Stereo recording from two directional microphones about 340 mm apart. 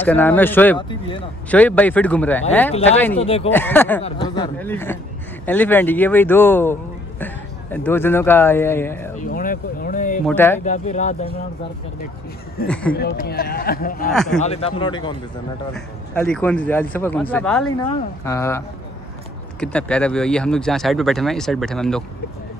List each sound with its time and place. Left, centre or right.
0.0 s speech: centre
3.2 s a man's voice: centre
3.5 s a man's voice: centre
9.1 s speech: left
10.2 s speech: centre
10.6 s speech: left
12.6 s speech: centre
12.9 s speech: left
14.1 s speech: centre
14.4 s a man's voice: centre
19.6 s speech: centre